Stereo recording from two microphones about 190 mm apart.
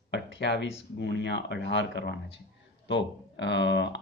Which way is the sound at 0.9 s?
65° left (ahead or behind).